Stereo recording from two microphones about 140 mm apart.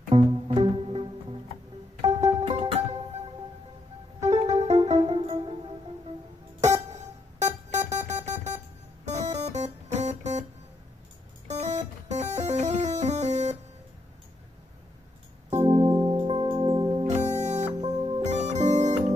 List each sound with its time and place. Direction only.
0.1 s music: 40° right (ahead or behind)
2.0 s music: 50° right (ahead or behind)
4.2 s music: 55° right (ahead or behind)
6.6 s music: 55° right (ahead or behind)
11.4 s music: 55° right (ahead or behind)
15.7 s music: 20° right (ahead or behind)
16.1 s music: 40° right (ahead or behind)
17.1 s music: 55° right (ahead or behind)
17.7 s music: 30° right (ahead or behind)
18.2 s music: 55° right (ahead or behind)